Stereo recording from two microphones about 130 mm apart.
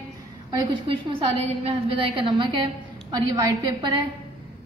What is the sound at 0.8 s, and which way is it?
A woman's voice, 40° right (ahead or behind).